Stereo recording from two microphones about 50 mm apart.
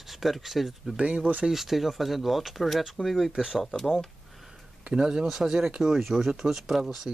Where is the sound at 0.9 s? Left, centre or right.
Centre.